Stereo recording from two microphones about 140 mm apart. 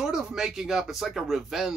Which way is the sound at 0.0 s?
5° right (ahead or behind).